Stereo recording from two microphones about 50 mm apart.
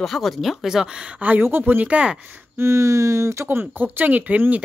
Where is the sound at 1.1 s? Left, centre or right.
Right.